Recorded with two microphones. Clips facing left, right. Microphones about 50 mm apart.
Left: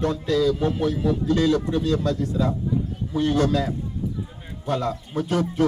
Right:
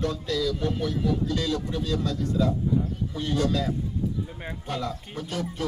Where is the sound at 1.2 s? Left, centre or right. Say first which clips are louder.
Left 7 dB; left.